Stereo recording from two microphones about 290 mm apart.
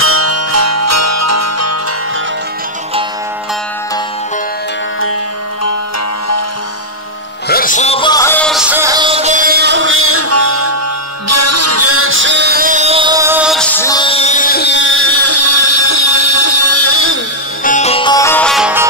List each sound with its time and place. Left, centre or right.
0.0 s music: right
7.4 s music: left
17.6 s music: left; by 18.9 s centre